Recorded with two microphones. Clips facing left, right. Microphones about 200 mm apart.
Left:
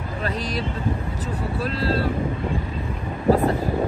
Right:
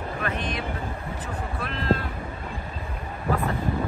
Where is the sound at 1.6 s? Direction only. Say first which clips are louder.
Left 2 dB; 35° left (ahead or behind).